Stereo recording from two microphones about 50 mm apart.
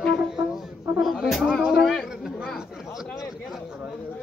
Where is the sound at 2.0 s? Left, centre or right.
Centre.